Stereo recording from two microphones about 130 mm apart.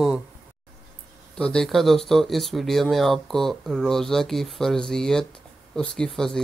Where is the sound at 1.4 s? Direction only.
5° left (ahead or behind).